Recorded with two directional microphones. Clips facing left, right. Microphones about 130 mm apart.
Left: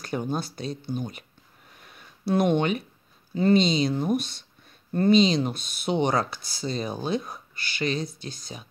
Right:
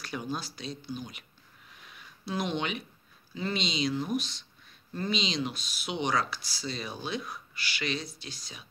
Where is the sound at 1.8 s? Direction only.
50° left (ahead or behind).